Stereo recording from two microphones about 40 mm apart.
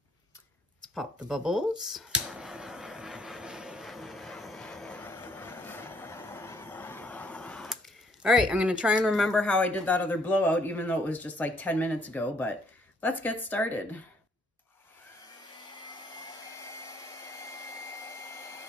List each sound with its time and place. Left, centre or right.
1.3 s speech: centre
2.1 s a sound: centre
3.8 s music: centre
5.0 s vehicle: left
6.7 s vehicle: left
8.2 s speech: centre
9.1 s speech: centre
9.4 s speech: left